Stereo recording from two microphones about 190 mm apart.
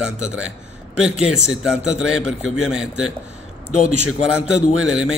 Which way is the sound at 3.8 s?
35° right (ahead or behind).